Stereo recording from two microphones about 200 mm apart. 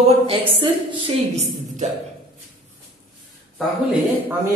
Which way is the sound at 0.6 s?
30° right (ahead or behind).